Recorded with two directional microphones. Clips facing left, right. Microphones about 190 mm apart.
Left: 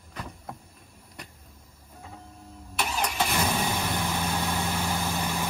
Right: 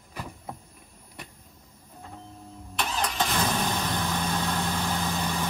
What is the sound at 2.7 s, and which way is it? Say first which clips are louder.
Vehicle: even; 10° left (ahead or behind).